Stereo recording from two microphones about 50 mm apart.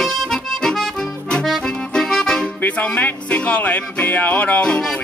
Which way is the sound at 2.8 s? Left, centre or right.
Left.